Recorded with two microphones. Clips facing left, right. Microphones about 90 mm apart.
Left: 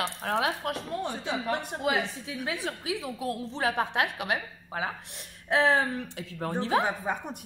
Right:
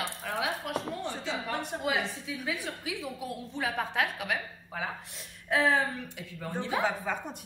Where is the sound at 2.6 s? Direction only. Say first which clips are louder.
Left 4 dB; 85° left.